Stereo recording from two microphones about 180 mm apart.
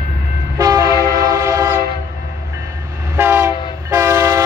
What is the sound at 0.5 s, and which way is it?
Train, 20° right (ahead or behind).